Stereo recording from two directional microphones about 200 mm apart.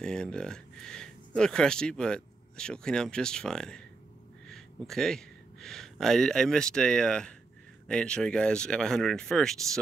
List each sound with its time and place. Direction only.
0.0 s speech: 5° left (ahead or behind)